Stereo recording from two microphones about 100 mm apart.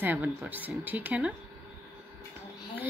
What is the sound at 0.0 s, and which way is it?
Speech, 20° right (ahead or behind).